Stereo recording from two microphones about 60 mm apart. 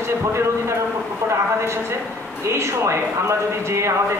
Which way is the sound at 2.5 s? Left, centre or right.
Right.